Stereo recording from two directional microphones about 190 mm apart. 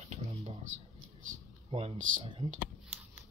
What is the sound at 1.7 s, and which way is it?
Speech, 30° right (ahead or behind).